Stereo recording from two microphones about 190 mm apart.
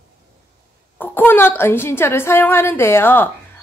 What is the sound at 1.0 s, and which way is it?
A woman's voice, 10° left (ahead or behind).